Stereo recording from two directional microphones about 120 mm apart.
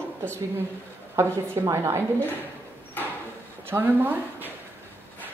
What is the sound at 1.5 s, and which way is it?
Speech, 20° right (ahead or behind).